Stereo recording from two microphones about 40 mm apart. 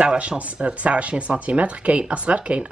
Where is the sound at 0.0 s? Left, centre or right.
Right.